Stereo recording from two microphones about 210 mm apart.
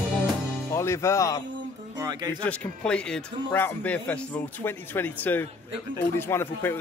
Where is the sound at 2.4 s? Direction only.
5° left (ahead or behind).